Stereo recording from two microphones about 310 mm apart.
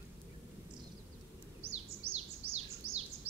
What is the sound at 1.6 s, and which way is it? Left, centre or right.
Bird, centre.